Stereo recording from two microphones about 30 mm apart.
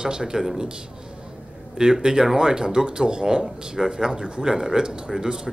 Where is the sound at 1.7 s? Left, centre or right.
Right.